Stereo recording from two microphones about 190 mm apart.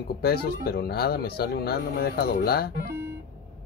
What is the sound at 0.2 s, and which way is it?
Speech, 55° left (ahead or behind).